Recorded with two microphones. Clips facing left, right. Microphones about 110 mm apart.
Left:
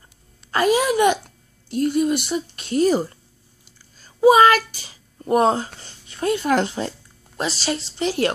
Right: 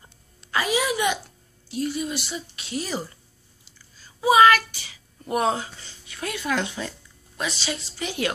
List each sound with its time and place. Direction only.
0.5 s a woman's voice: 45° left (ahead or behind)